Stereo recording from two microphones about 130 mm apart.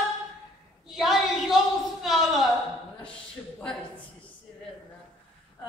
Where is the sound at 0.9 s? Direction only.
Centre (ahead or behind).